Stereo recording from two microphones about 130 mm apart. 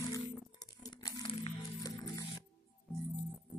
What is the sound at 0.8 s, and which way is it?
Crumpling, 30° left (ahead or behind).